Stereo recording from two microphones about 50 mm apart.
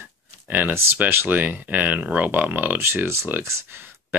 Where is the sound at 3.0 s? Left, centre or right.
Right.